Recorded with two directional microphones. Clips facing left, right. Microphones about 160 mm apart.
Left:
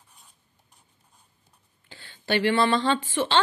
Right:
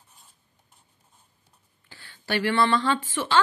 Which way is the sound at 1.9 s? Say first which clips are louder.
Left 3 dB; 20° left (ahead or behind).